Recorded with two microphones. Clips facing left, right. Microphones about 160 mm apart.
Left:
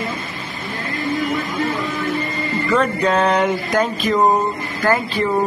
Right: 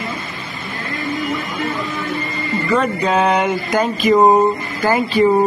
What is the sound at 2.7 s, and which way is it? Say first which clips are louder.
Speech: even; centre (ahead or behind).